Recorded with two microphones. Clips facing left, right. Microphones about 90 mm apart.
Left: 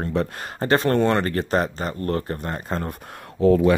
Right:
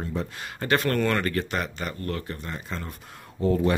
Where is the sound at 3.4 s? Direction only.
90° left.